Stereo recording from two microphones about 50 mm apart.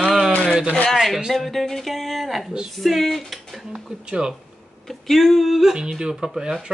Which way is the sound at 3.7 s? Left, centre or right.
Centre.